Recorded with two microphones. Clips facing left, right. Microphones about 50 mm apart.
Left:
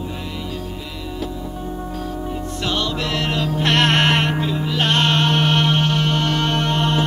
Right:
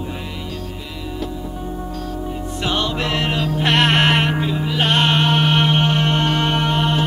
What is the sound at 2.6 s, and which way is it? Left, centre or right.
Music, right.